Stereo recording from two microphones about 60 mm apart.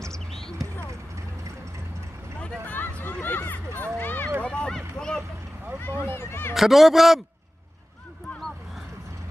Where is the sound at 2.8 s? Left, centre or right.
Left.